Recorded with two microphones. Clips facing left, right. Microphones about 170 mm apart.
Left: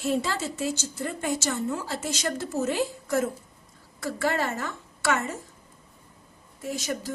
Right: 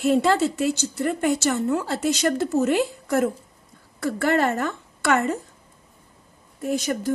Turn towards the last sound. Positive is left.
turn(degrees=-60)  # may be behind; listen again after turning